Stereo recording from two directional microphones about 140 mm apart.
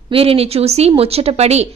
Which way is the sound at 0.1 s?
45° right (ahead or behind).